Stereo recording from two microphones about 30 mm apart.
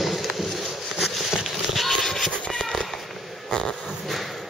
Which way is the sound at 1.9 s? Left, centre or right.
Centre.